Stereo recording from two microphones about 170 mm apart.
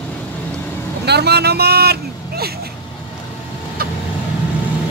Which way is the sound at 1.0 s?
75° right (ahead or behind).